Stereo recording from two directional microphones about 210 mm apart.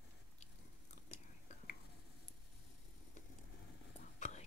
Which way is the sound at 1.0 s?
35° left (ahead or behind).